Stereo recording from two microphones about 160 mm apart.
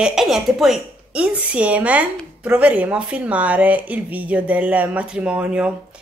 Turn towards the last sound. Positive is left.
turn(degrees=-10)  # may be behind; listen again after turning